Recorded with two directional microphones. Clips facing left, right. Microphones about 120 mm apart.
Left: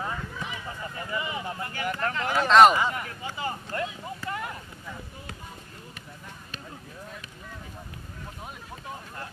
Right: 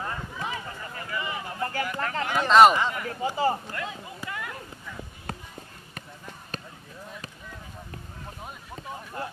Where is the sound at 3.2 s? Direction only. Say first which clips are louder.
Right 11 dB; 35° right (ahead or behind).